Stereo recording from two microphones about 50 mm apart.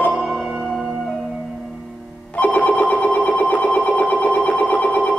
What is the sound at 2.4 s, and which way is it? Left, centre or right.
Telephone bell ringing, left.